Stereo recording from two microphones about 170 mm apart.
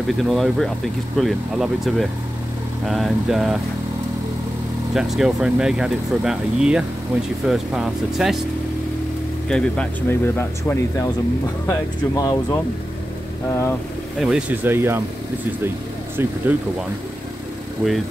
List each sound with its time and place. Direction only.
0.2 s speech: centre (ahead or behind)
4.9 s speech: 5° right (ahead or behind)
9.5 s speech: 5° left (ahead or behind)
14.2 s speech: 5° right (ahead or behind)
16.2 s speech: 15° right (ahead or behind)
17.8 s speech: 10° right (ahead or behind)